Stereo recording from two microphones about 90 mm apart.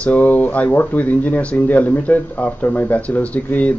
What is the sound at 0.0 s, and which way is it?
Speech, 15° left (ahead or behind).